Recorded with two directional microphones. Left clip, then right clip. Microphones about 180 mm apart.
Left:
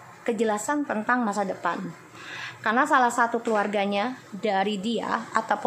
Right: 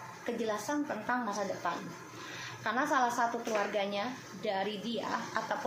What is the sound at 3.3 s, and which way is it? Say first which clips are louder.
Speech: left 8 dB; 40° left (ahead or behind).